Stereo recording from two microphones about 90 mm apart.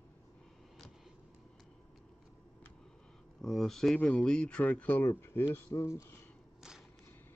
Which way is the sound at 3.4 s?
5° left (ahead or behind).